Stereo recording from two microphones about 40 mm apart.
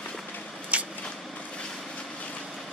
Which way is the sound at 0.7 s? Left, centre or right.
Right.